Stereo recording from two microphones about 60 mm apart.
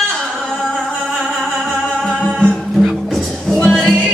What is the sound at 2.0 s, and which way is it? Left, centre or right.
Music, centre.